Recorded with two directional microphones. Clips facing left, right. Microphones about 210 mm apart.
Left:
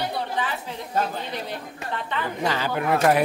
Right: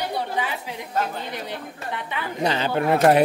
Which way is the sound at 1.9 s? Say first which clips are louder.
Left 2 dB; 15° right (ahead or behind).